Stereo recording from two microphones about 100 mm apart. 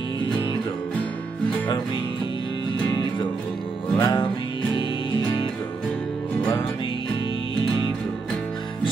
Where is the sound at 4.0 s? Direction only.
40° left (ahead or behind).